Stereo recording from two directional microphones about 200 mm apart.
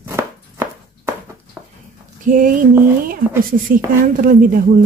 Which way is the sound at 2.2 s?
45° right (ahead or behind).